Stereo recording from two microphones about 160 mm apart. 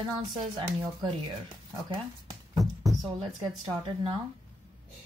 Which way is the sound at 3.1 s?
30° right (ahead or behind).